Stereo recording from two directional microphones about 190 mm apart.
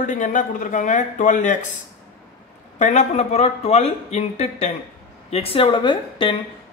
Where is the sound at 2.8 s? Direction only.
35° left (ahead or behind).